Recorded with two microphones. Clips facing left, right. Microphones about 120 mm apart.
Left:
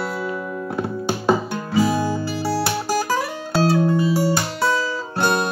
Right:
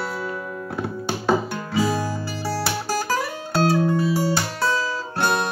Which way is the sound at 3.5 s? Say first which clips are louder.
Left 2 dB; 5° left (ahead or behind).